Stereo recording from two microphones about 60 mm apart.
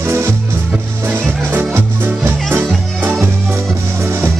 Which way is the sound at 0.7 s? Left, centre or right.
Right.